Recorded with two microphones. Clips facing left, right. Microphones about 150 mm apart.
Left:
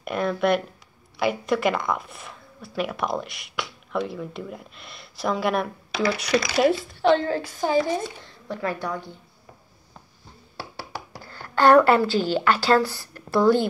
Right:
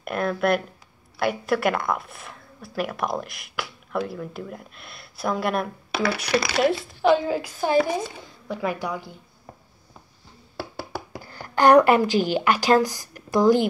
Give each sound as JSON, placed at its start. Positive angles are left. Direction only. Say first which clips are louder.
{"t": 0.0, "sound": "speech", "louder": "even", "side_deg": 0}
{"t": 5.9, "sound": "speech", "louder": "left 1 dB", "side_deg": -65}
{"t": 6.6, "sound": "a woman's voice", "louder": "left 1 dB", "side_deg": 0}
{"t": 11.2, "sound": "a woman's voice", "louder": "even", "side_deg": -15}